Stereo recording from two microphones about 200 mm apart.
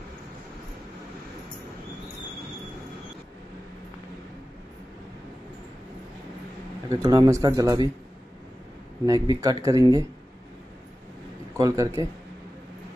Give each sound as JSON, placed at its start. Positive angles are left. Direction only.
{"t": 7.0, "sound": "speech", "side_deg": -20}
{"t": 9.0, "sound": "speech", "side_deg": -20}
{"t": 11.5, "sound": "speech", "side_deg": -15}